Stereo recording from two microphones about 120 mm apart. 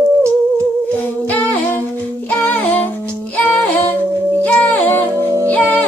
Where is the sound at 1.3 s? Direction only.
15° left (ahead or behind).